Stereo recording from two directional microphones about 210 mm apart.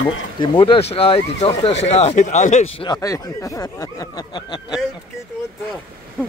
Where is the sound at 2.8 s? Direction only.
15° left (ahead or behind).